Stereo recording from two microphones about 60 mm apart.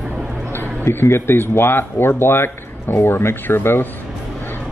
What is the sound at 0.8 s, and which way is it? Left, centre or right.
Speech, left.